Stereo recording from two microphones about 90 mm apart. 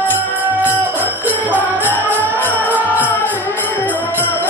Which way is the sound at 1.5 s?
20° right (ahead or behind).